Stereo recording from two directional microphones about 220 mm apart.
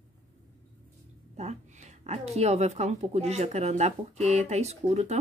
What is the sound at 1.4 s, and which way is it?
A woman's voice, 30° right (ahead or behind).